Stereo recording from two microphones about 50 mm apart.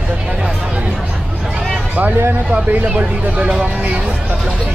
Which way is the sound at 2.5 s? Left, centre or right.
Right.